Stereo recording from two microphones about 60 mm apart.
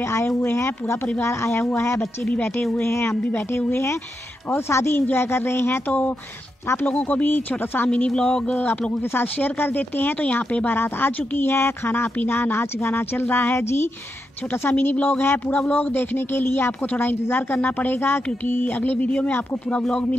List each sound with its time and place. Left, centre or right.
0.0 s speech: left
2.8 s speech: left
8.1 s speech: centre
9.1 s speech: left
10.2 s speech: left
18.8 s speech: left
19.7 s speech: centre